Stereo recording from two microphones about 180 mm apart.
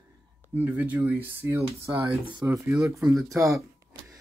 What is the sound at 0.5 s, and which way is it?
Speech, 10° right (ahead or behind).